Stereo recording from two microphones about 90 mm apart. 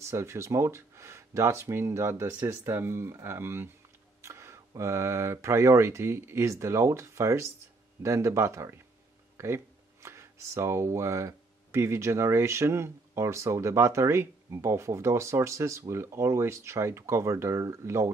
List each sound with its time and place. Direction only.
0.0 s speech: 30° right (ahead or behind)